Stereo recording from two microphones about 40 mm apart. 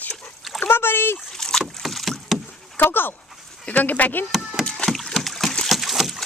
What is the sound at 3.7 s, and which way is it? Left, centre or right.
Speech, left.